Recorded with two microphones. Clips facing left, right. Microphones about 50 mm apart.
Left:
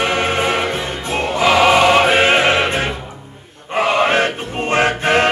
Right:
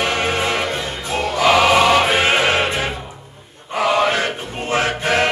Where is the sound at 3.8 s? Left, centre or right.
Left.